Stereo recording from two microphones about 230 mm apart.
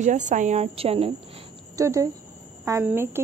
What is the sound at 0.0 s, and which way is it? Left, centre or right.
A woman's voice, right.